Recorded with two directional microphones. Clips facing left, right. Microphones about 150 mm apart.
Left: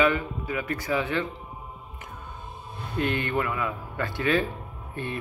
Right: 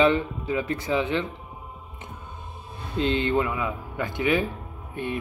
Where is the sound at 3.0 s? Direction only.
20° right (ahead or behind).